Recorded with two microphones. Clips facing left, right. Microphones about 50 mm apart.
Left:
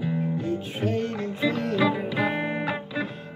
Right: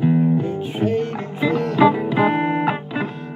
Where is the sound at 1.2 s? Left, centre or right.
Right.